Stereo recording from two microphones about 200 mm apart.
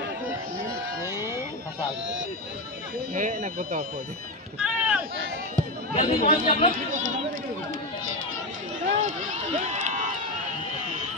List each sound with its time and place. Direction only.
3.2 s speech: 40° right (ahead or behind)
4.6 s run: 5° right (ahead or behind)
5.9 s speech: 30° left (ahead or behind)
8.8 s speech: 40° right (ahead or behind)